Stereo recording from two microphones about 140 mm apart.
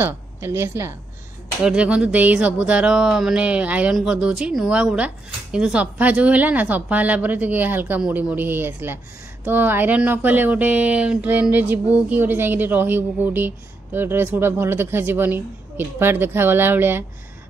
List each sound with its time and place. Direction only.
0.0 s a woman's voice: 20° right (ahead or behind)
1.6 s speech: 5° right (ahead or behind)